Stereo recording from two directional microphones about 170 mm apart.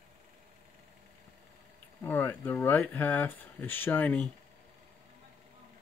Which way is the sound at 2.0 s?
10° left (ahead or behind).